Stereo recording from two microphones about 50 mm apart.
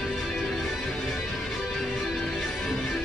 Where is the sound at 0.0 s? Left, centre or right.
Centre.